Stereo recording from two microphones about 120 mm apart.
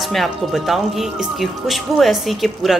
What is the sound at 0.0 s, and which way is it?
Speech, centre (ahead or behind).